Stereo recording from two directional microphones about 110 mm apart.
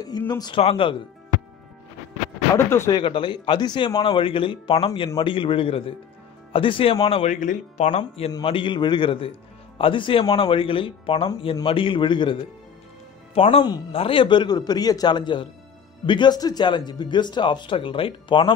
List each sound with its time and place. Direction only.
0.3 s speech: 40° left (ahead or behind)
0.6 s speech: 60° left (ahead or behind)
2.5 s speech: 25° left (ahead or behind)
3.0 s speech: 50° left (ahead or behind); by 8.0 s 90° left
8.5 s speech: 50° left (ahead or behind)
13.3 s speech: 65° left (ahead or behind)
13.9 s speech: 55° left (ahead or behind)